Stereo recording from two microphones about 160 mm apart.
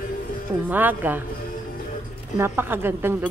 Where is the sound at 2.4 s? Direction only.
15° right (ahead or behind).